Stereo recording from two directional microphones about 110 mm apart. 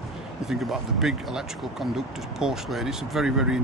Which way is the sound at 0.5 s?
Centre (ahead or behind).